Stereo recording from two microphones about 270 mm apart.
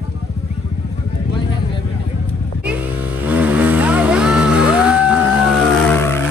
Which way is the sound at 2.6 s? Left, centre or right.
Centre.